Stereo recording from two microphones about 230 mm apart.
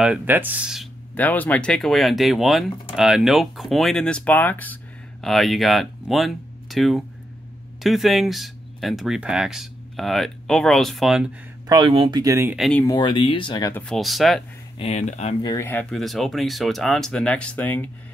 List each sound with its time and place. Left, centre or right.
0.0 s speech: centre
11.6 s speech: centre
12.5 s speech: centre
12.8 s speech: centre
14.8 s speech: left
15.4 s speech: centre